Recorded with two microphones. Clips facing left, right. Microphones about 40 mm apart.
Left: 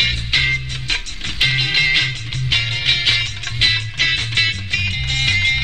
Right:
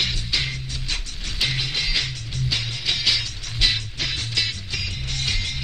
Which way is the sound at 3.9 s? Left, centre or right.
Left.